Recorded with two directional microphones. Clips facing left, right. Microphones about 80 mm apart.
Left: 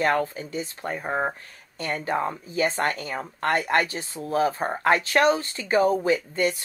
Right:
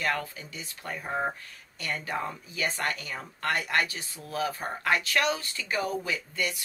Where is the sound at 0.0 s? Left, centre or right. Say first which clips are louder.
Left 8 dB; left.